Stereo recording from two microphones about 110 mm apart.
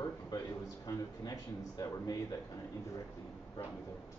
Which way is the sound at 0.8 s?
30° left (ahead or behind).